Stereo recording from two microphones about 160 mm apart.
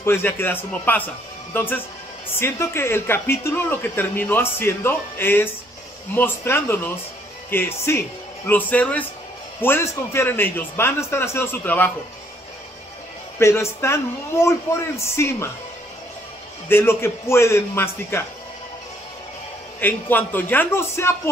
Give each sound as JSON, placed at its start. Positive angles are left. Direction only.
{"t": 0.0, "sound": "a man's voice", "side_deg": 15}
{"t": 13.4, "sound": "speech", "side_deg": 15}
{"t": 16.6, "sound": "speech", "side_deg": 15}
{"t": 19.8, "sound": "speech", "side_deg": 10}